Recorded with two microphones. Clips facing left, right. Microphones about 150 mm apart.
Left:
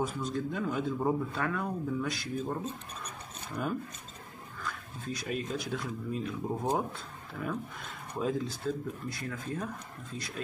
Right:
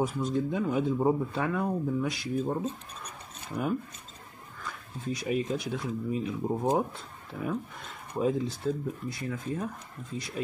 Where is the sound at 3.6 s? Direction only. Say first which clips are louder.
Right 3 dB; 15° right (ahead or behind).